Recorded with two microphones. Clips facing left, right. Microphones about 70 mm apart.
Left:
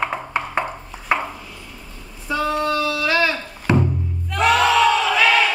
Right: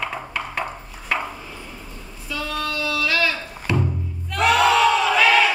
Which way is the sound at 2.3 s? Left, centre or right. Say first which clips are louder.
Left 7 dB; left.